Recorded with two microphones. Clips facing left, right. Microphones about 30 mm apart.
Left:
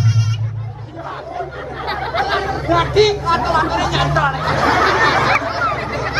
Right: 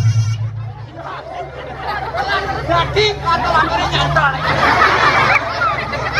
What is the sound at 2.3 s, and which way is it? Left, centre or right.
Chatter, centre.